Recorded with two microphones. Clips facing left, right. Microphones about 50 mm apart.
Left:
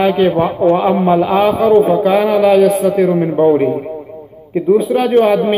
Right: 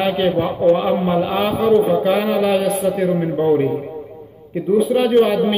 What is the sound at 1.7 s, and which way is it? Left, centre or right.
Speech, left.